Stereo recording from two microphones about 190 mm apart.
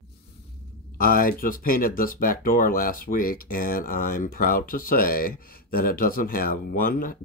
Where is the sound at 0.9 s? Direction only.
50° left (ahead or behind).